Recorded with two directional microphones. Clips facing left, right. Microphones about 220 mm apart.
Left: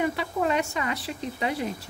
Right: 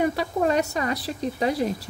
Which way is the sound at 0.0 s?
40° right (ahead or behind).